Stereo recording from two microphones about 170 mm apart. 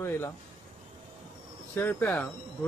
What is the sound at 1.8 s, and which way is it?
Speech, 10° left (ahead or behind).